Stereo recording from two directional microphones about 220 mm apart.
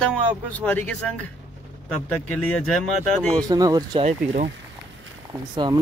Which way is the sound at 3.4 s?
15° right (ahead or behind).